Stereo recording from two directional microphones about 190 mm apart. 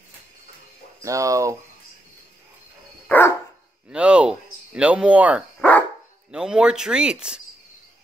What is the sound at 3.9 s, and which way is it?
Speech, 5° right (ahead or behind).